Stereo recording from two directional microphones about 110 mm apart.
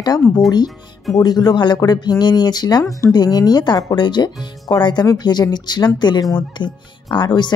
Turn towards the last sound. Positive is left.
turn(degrees=40)  # may be behind; listen again after turning